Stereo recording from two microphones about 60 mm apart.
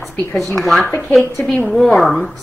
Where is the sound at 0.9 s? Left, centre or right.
Left.